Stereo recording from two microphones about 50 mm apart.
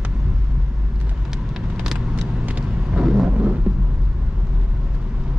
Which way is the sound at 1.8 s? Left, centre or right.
Centre.